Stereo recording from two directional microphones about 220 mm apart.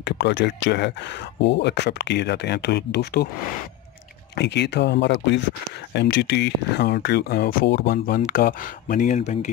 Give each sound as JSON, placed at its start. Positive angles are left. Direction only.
{"t": 0.0, "sound": "speech", "side_deg": 50}
{"t": 4.4, "sound": "speech", "side_deg": 50}